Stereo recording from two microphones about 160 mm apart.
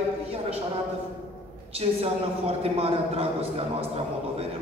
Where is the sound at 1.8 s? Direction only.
35° right (ahead or behind).